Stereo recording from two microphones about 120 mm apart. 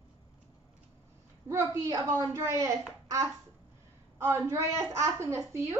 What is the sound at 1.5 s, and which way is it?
A woman's voice, 25° right (ahead or behind).